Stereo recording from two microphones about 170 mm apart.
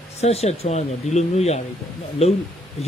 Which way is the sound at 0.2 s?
40° left (ahead or behind).